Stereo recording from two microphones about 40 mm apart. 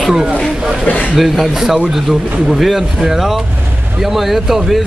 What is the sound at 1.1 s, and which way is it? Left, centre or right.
Speech, centre.